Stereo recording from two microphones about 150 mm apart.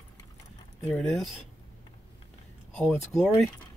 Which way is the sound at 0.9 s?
Centre (ahead or behind).